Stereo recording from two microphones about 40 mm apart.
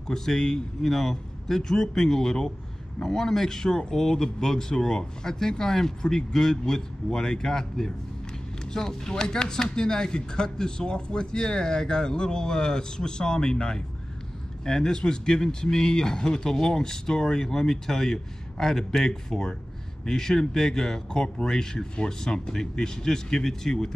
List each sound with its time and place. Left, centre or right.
0.0 s speech: centre